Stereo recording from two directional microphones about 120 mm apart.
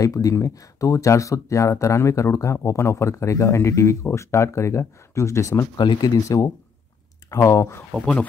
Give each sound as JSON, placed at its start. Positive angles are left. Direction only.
{"t": 0.0, "sound": "speech", "side_deg": 30}
{"t": 5.8, "sound": "speech", "side_deg": 35}